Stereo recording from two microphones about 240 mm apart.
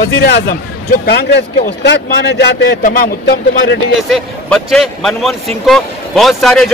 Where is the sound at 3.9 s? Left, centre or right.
Centre.